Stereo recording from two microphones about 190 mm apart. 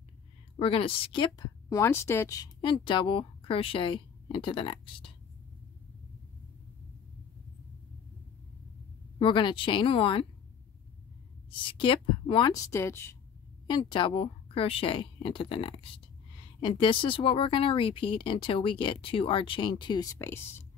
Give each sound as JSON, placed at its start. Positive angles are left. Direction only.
{"t": 0.6, "sound": "a woman's voice", "side_deg": 30}
{"t": 9.2, "sound": "a woman's voice", "side_deg": 25}
{"t": 11.6, "sound": "a woman's voice", "side_deg": 25}
{"t": 13.7, "sound": "a woman's voice", "side_deg": 25}